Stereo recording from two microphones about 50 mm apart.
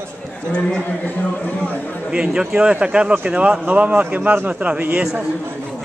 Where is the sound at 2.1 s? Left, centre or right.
Centre.